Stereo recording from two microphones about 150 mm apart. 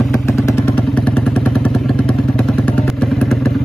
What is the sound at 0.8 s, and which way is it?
Vehicle, 5° left (ahead or behind).